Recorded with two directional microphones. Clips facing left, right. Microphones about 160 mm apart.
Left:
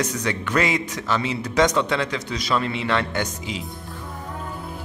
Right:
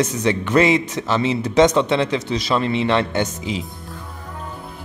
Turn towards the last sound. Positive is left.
turn(degrees=-25)  # may be behind; listen again after turning